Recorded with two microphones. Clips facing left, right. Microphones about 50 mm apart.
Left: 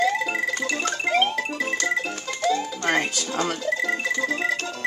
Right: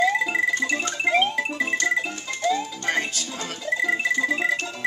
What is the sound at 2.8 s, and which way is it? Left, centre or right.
Speech, left.